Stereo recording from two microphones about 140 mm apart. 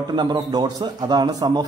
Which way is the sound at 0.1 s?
30° right (ahead or behind).